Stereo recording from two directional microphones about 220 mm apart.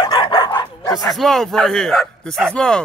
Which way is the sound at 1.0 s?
Centre (ahead or behind).